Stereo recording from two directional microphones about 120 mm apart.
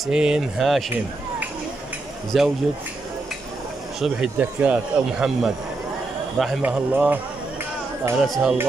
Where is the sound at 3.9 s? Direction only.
5° right (ahead or behind).